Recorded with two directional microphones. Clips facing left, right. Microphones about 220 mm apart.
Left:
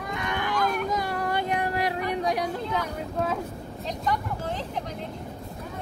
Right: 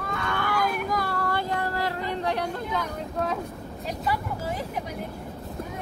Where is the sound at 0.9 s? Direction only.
20° left (ahead or behind).